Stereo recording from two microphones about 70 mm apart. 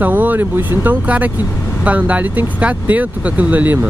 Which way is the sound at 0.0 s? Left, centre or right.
Right.